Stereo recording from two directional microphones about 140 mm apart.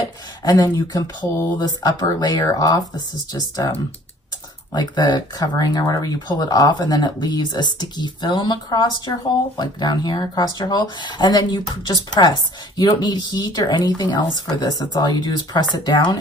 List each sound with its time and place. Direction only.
0.4 s speech: 25° left (ahead or behind)
4.7 s speech: 30° left (ahead or behind)